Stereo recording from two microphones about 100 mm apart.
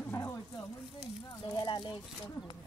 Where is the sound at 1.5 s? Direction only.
50° left (ahead or behind).